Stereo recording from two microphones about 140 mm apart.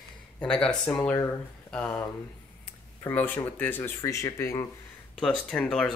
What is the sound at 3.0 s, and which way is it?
Speech, 10° left (ahead or behind).